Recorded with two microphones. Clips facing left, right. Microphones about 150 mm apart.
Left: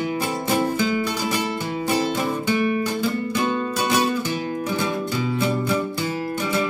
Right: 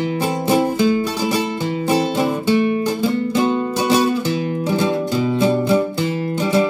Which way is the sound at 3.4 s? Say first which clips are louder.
Right 5 dB; 20° right (ahead or behind).